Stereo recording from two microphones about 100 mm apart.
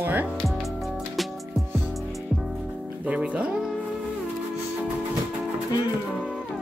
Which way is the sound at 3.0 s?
10° right (ahead or behind).